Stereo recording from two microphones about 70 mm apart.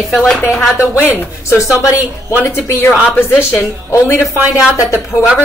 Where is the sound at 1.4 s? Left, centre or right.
Left.